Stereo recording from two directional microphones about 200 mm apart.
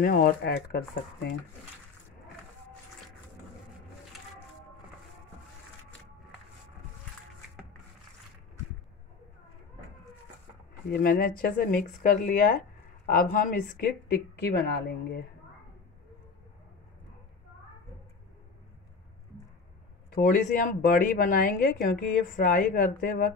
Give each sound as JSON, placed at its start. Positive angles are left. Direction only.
{"t": 0.0, "sound": "speech", "side_deg": 45}
{"t": 10.9, "sound": "speech", "side_deg": 50}
{"t": 20.2, "sound": "speech", "side_deg": 40}